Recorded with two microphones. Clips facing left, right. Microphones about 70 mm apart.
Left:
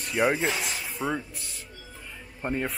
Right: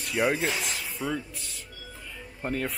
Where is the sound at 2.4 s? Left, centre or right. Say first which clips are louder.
Left 1 dB; centre.